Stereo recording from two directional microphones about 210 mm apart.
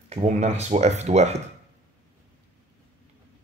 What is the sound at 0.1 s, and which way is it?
Speech, 30° right (ahead or behind).